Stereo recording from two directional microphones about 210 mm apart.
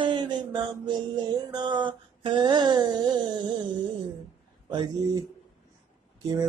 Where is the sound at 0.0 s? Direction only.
20° right (ahead or behind).